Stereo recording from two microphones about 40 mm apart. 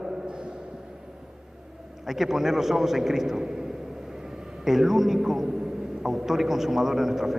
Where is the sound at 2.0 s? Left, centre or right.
Centre.